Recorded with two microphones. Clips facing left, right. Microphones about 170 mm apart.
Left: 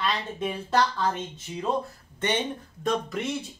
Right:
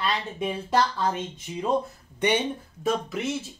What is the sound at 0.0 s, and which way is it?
Speech, 10° right (ahead or behind).